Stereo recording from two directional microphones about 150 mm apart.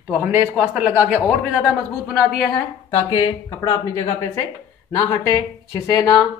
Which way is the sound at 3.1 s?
25° left (ahead or behind).